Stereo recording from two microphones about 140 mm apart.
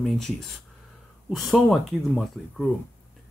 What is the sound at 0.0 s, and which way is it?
Speech, centre (ahead or behind).